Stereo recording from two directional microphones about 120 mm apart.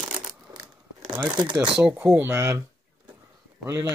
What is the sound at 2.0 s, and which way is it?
Speech, 15° right (ahead or behind).